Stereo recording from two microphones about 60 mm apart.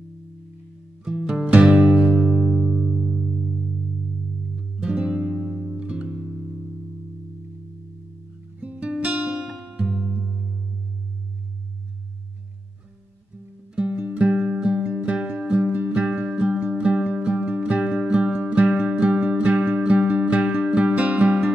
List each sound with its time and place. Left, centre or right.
1.0 s music: centre
2.1 s music: centre
4.6 s music: centre
8.5 s music: right
13.7 s music: right